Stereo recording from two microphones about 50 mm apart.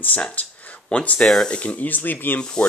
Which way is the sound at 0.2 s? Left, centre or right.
Left.